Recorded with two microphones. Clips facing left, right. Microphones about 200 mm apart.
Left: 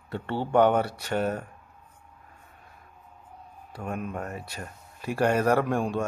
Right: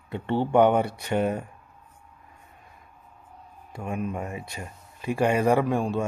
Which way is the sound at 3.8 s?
5° right (ahead or behind).